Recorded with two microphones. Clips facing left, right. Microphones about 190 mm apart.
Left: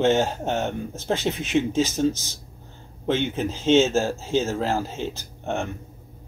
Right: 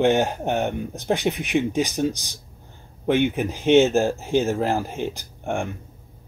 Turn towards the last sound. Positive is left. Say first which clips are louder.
# right 1 dB
turn(degrees=-15)  # may be behind; listen again after turning